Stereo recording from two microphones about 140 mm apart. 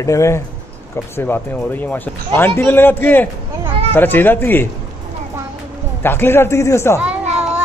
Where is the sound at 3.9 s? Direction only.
15° left (ahead or behind).